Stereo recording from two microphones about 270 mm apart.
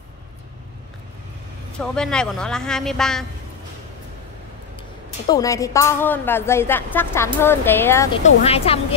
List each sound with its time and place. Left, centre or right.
1.8 s speech: centre
5.3 s a woman's voice: centre
8.5 s speech: left